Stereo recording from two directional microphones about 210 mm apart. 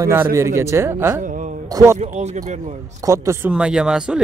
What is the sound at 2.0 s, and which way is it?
Speech, 35° right (ahead or behind).